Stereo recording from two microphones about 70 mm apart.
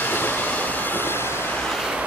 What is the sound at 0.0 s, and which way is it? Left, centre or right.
Train, left.